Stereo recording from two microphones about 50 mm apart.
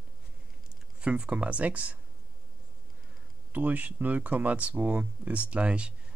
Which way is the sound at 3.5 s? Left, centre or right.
Right.